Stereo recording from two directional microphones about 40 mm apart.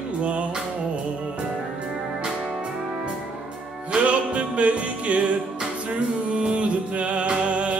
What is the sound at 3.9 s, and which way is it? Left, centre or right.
Music, right.